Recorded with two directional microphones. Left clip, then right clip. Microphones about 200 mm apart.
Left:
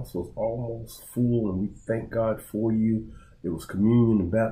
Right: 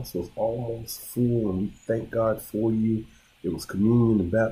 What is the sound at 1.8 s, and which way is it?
Speech, 10° right (ahead or behind).